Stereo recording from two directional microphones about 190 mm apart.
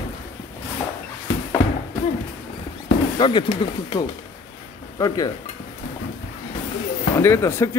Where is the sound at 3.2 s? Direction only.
25° left (ahead or behind).